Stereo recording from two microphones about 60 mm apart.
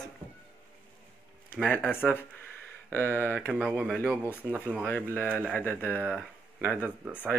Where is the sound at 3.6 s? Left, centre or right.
Centre; by 5.4 s left.